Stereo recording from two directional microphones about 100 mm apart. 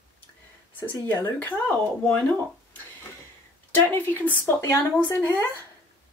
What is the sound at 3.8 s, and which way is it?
Speech, 20° left (ahead or behind).